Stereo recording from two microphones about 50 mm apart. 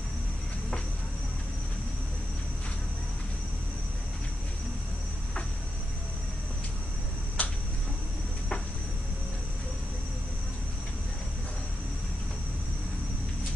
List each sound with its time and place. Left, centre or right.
7.4 s tick-tock: left